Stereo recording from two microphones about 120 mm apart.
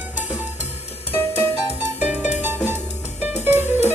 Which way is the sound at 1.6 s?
15° right (ahead or behind).